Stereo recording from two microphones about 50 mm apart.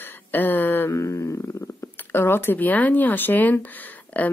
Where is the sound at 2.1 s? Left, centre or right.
Left.